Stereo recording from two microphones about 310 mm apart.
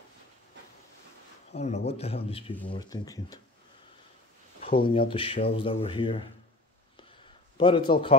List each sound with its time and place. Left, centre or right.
1.5 s a man's voice: left
4.6 s speech: centre
7.5 s speech: centre